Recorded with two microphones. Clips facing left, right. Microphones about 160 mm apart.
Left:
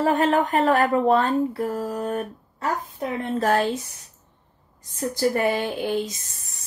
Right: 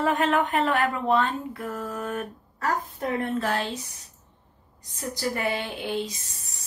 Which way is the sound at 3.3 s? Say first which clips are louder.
Left 6 dB; 45° left (ahead or behind).